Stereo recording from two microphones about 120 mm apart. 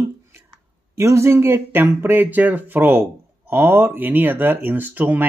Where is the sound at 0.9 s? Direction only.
25° right (ahead or behind).